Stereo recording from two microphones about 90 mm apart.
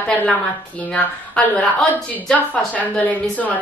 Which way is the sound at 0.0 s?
20° left (ahead or behind).